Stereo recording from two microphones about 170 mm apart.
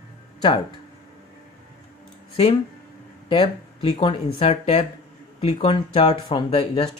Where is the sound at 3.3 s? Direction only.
30° left (ahead or behind).